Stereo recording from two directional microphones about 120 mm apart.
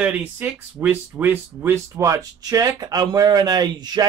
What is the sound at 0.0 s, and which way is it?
Speech, 15° right (ahead or behind).